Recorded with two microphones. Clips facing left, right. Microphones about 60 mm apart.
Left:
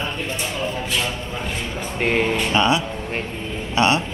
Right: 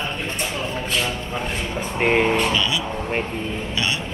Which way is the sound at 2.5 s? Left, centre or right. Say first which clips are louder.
Left 4 dB; left.